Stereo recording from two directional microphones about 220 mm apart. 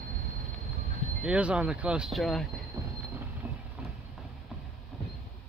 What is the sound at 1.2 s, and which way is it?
Speech, 5° right (ahead or behind).